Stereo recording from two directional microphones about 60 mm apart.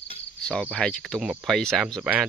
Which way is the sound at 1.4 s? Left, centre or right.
Centre.